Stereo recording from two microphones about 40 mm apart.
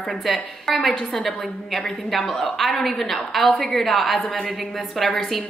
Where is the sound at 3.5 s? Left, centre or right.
Left.